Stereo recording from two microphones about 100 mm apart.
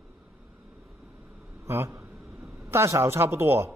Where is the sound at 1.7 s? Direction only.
25° right (ahead or behind).